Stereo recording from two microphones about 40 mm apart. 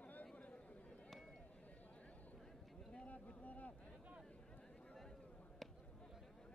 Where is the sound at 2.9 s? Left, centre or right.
Left.